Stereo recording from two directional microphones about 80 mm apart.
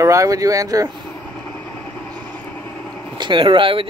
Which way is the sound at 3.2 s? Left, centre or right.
Right.